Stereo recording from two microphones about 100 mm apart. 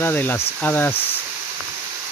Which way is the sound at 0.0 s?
20° left (ahead or behind).